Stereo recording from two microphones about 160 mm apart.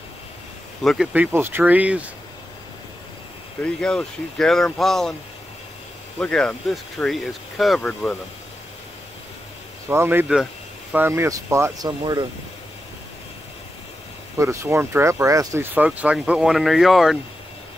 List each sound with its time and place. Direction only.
0.8 s speech: 5° right (ahead or behind)
3.6 s speech: 5° left (ahead or behind)
6.1 s speech: 5° left (ahead or behind)
9.8 s speech: 15° right (ahead or behind)
14.4 s speech: 20° right (ahead or behind); by 17.2 s centre (ahead or behind)